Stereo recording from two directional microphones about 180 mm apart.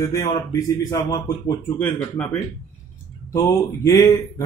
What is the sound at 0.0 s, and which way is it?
Speech, 20° left (ahead or behind).